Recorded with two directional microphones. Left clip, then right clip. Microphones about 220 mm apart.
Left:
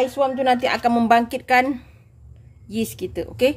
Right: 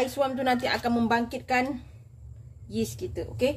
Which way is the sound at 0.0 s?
20° left (ahead or behind).